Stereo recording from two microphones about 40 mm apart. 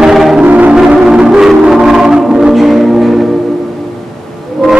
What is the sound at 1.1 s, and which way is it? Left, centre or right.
Music, centre.